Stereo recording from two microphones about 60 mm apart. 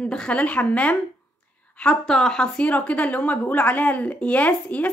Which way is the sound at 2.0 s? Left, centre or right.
Centre.